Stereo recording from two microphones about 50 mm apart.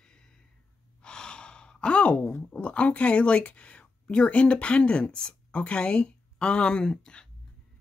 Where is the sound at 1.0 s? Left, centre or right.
Centre.